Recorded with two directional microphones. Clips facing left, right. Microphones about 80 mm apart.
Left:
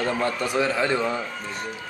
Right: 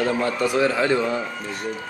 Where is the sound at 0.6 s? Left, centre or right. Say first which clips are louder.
Right 2 dB; right.